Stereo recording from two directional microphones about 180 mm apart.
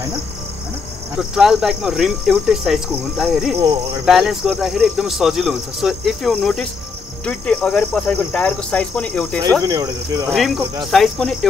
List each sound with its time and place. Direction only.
1.1 s speech: centre (ahead or behind)
9.6 s cricket: 20° right (ahead or behind)
10.3 s speech: centre (ahead or behind)